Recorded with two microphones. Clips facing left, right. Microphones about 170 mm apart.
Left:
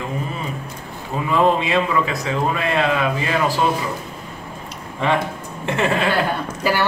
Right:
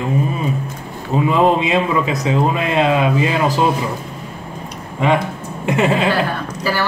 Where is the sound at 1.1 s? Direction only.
20° right (ahead or behind).